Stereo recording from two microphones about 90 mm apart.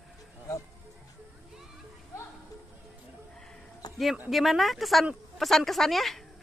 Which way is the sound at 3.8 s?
50° left (ahead or behind).